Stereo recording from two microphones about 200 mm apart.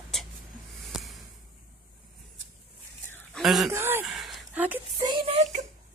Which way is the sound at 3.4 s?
Centre (ahead or behind).